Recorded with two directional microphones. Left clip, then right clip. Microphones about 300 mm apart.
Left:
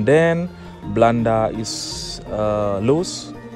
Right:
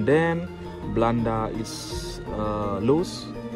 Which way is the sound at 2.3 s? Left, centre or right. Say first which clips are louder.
Left 8 dB; left.